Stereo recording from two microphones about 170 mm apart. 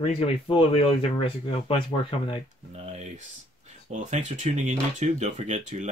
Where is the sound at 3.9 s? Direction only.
45° right (ahead or behind).